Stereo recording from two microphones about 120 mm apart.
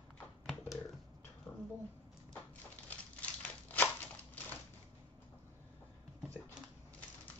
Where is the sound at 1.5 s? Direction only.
10° left (ahead or behind).